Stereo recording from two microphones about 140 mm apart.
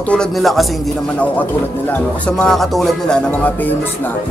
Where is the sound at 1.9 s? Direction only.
5° left (ahead or behind).